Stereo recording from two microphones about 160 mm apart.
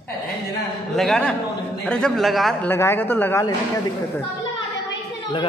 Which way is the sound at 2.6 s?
15° left (ahead or behind).